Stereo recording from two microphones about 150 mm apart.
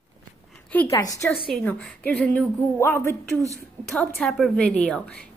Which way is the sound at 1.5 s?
10° left (ahead or behind).